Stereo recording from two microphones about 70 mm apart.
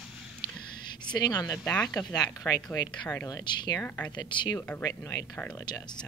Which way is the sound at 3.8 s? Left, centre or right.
Left.